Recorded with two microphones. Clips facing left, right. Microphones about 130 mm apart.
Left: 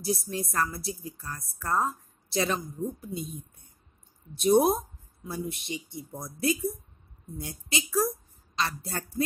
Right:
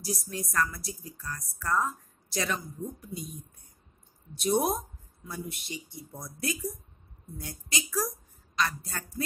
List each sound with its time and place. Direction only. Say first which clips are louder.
0.0 s speech: left 5 dB; 25° left (ahead or behind)
4.4 s speech: left 5 dB; 25° left (ahead or behind)